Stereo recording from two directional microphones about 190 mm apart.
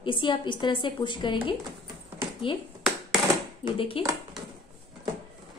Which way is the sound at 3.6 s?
30° left (ahead or behind).